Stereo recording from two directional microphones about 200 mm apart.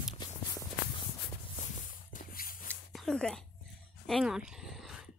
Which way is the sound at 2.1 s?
45° left (ahead or behind).